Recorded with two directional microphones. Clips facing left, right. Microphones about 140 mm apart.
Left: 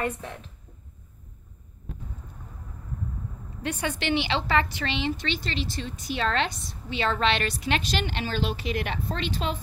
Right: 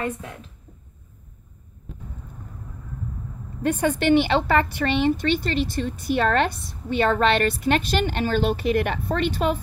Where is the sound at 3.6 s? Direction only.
50° right (ahead or behind).